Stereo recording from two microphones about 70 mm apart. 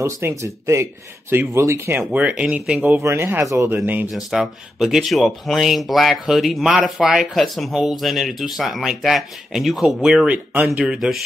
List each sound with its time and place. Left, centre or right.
0.0 s speech: right
1.3 s speech: right
1.6 s speech: right
2.0 s speech: right
3.0 s speech: right
4.1 s speech: centre
10.3 s speech: right
10.9 s speech: centre